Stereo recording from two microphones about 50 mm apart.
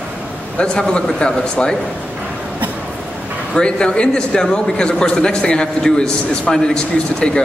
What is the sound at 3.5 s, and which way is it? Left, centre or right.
A man's voice, centre.